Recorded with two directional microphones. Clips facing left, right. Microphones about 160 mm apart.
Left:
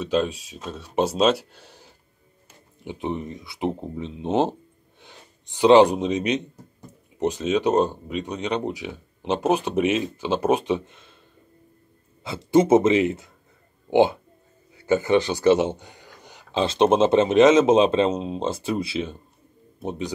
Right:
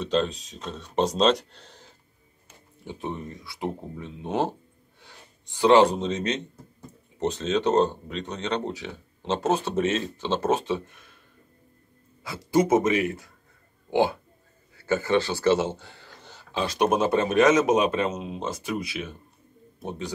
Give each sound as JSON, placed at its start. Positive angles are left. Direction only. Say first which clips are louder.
{"t": 0.0, "sound": "a man's voice", "louder": "left 2 dB", "side_deg": 10}
{"t": 12.2, "sound": "a man's voice", "louder": "left 4 dB", "side_deg": 25}